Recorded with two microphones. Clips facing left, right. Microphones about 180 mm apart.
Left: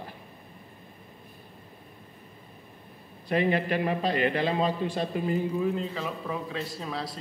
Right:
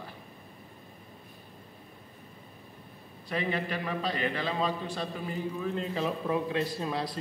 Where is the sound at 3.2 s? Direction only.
50° left (ahead or behind).